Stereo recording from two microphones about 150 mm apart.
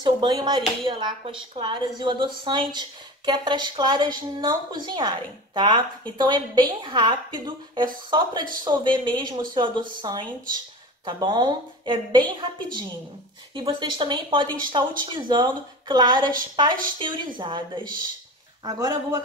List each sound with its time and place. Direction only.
0.0 s a woman's voice: 30° right (ahead or behind)
13.6 s a woman's voice: 30° right (ahead or behind)